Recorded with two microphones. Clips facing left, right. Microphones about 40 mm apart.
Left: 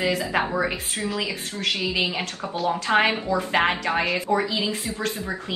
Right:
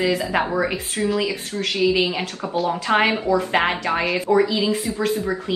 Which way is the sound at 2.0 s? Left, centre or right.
Centre.